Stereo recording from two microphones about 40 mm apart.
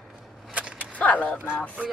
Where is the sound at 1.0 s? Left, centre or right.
Left.